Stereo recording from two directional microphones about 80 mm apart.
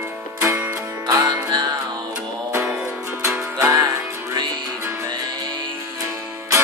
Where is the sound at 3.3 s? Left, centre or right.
Right.